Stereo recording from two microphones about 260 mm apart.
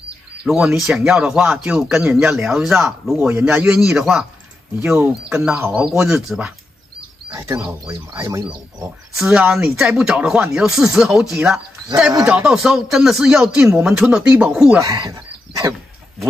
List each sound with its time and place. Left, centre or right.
0.5 s speech: centre
7.3 s speech: centre
9.2 s speech: centre
14.8 s speech: centre